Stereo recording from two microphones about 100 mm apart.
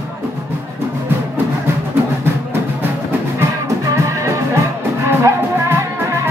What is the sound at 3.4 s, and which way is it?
Music, 30° right (ahead or behind).